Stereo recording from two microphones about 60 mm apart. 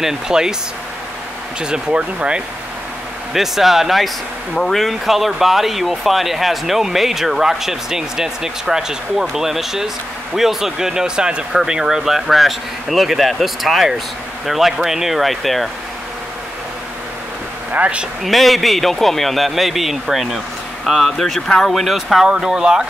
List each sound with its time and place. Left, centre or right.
0.0 s speech: centre
1.6 s speech: centre
3.3 s speech: centre
17.7 s speech: centre
18.2 s speech: centre